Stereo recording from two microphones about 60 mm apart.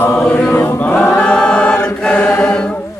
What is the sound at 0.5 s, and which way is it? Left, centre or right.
Chant, left.